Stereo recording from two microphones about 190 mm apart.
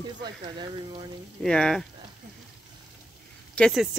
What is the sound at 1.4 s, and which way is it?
Speech, 5° left (ahead or behind).